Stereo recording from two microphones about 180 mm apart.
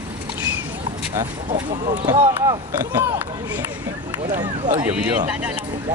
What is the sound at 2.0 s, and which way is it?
Speech, 20° right (ahead or behind).